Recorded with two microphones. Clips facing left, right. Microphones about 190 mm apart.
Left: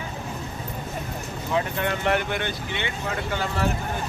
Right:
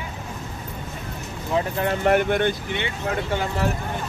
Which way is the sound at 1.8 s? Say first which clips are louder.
Right 4 dB; 40° right (ahead or behind).